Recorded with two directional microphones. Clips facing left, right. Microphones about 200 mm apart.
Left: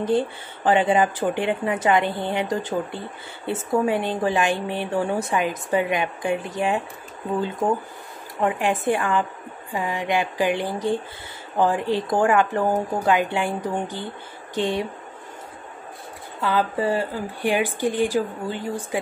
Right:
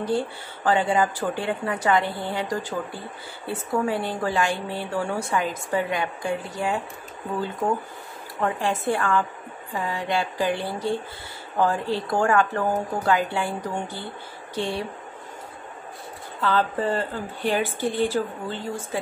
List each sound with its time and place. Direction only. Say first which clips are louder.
0.0 s a woman's voice: left 3 dB; 20° left (ahead or behind)
8.4 s a woman's voice: left 3 dB; 15° left (ahead or behind)
16.3 s a woman's voice: left 1 dB; 10° left (ahead or behind)